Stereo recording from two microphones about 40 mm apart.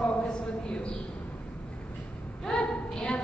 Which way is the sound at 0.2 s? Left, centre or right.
Left.